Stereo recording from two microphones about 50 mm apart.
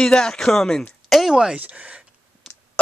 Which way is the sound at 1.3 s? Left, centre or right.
Centre.